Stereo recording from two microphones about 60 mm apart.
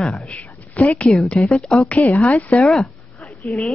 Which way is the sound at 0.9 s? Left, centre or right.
Centre.